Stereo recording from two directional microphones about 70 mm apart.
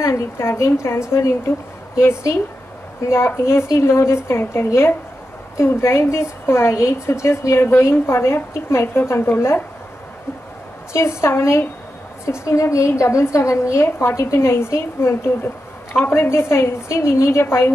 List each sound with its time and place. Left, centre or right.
0.0 s a woman's voice: left
2.0 s a woman's voice: left
10.9 s a woman's voice: left